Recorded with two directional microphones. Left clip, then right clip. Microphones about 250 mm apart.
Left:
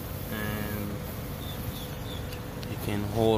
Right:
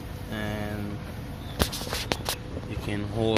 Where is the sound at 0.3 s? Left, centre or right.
Right.